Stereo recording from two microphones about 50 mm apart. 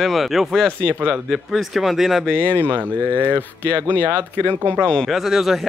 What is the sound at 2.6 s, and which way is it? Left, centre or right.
Speech, right.